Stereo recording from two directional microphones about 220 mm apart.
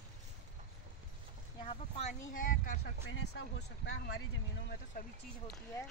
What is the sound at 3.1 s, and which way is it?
Speech, 50° left (ahead or behind).